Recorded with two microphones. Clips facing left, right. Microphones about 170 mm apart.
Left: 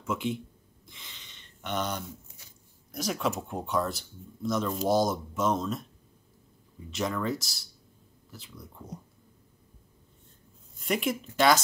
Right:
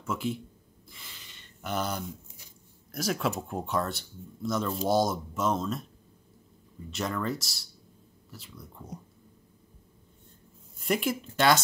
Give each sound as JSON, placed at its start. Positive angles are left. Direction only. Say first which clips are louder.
{"t": 0.0, "sound": "speech", "louder": "left 1 dB", "side_deg": 0}
{"t": 0.9, "sound": "a sound", "louder": "right 1 dB", "side_deg": -5}
{"t": 2.9, "sound": "speech", "louder": "even", "side_deg": 0}
{"t": 6.9, "sound": "speech", "louder": "left 1 dB", "side_deg": 0}
{"t": 10.8, "sound": "speech", "louder": "right 1 dB", "side_deg": 0}